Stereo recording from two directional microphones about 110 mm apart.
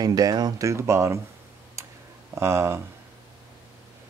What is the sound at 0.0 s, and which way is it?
Speech, 35° right (ahead or behind).